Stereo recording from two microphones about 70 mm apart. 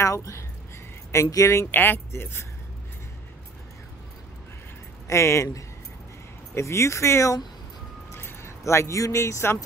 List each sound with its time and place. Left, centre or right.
0.0 s speech: left
1.7 s speech: left
5.0 s speech: left